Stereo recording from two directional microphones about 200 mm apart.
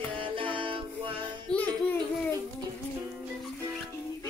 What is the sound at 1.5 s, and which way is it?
Music, 5° left (ahead or behind).